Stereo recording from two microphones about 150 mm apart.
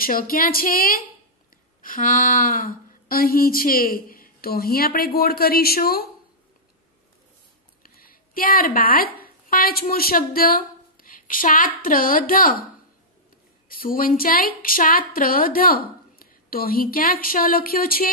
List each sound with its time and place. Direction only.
0.0 s speech: 75° left (ahead or behind)
1.8 s speech: 65° left (ahead or behind); by 6.0 s 90° left
7.8 s speech: 75° left (ahead or behind)
13.7 s speech: 70° left (ahead or behind)